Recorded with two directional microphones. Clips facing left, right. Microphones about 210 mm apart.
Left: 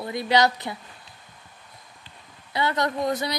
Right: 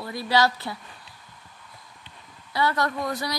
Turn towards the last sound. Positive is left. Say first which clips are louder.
# left 3 dB
turn(degrees=20)  # may be behind; listen again after turning